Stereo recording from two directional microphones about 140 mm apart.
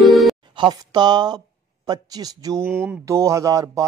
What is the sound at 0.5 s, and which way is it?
Speech, 30° right (ahead or behind).